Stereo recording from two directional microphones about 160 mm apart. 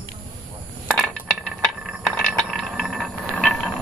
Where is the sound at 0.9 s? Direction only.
5° left (ahead or behind).